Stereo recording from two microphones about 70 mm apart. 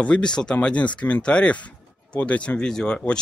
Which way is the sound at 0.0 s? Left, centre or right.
Centre.